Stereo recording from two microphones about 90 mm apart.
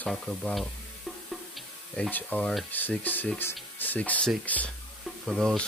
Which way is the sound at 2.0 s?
20° left (ahead or behind).